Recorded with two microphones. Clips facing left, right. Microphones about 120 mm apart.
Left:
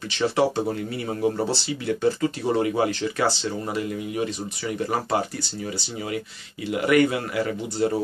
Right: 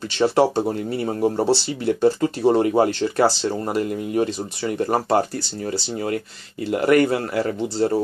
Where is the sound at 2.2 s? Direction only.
40° right (ahead or behind).